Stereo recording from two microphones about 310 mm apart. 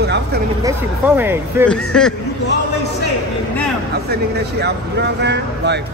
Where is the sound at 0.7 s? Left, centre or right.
Centre.